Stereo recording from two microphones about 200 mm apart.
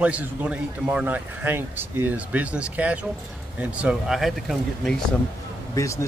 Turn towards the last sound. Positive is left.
turn(degrees=15)  # may be behind; listen again after turning